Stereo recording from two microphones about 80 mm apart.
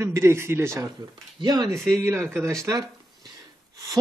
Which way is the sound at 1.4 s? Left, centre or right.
Right.